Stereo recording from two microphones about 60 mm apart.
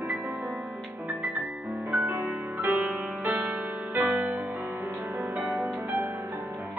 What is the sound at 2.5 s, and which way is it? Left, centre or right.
Music, right.